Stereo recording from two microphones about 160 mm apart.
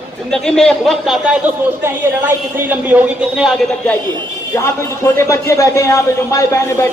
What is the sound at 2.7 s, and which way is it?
Speech, 10° right (ahead or behind).